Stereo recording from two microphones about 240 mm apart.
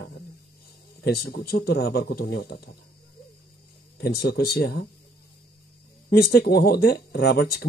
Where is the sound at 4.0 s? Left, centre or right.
Left.